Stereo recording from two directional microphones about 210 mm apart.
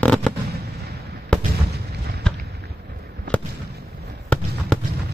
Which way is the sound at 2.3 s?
5° left (ahead or behind).